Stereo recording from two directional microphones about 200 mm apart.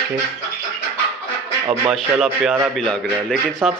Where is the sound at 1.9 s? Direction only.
Centre (ahead or behind).